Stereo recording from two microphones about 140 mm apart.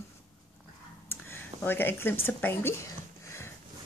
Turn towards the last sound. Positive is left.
turn(degrees=20)  # may be behind; listen again after turning